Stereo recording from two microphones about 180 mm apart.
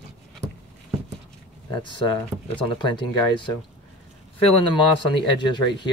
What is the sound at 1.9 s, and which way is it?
Speech, 25° left (ahead or behind).